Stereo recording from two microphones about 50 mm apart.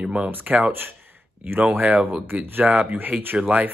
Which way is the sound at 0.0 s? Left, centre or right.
Right.